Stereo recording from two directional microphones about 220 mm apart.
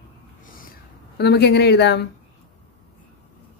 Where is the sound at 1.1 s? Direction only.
50° left (ahead or behind).